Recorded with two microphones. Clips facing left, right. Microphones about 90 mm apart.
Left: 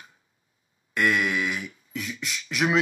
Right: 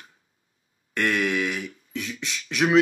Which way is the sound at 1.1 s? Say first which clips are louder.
Right 1 dB; 45° right (ahead or behind).